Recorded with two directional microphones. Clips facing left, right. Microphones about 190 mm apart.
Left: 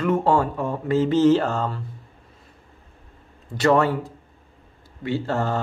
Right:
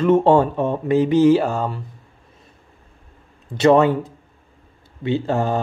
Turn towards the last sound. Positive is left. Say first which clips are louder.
# right 4 dB
turn(degrees=-15)  # may be behind; listen again after turning